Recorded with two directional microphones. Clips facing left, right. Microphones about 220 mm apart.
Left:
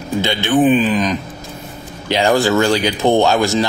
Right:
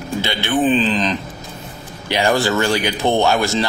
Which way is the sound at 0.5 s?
15° left (ahead or behind).